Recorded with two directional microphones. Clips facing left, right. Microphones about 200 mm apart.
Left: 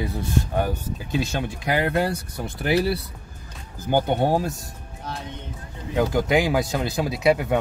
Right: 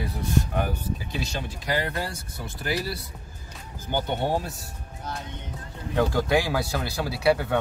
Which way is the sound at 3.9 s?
45° left (ahead or behind).